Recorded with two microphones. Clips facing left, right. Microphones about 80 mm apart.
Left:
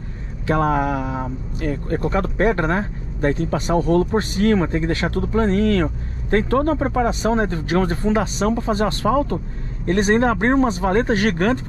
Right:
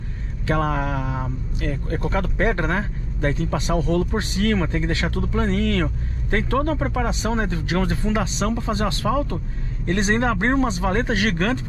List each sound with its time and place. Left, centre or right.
0.5 s speech: left